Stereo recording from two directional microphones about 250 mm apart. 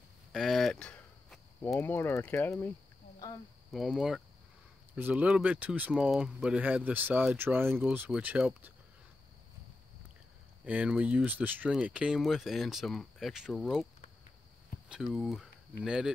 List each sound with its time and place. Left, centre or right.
0.3 s speech: centre
3.7 s speech: centre
10.6 s speech: centre
14.7 s a sound: left
15.1 s speech: centre